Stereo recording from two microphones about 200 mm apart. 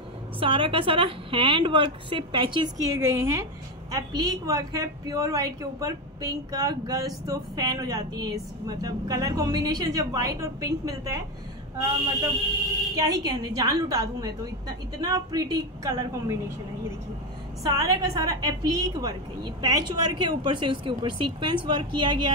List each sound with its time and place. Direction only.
0.4 s a woman's voice: 25° right (ahead or behind)
13.0 s a woman's voice: 20° right (ahead or behind)
17.6 s a woman's voice: 20° right (ahead or behind)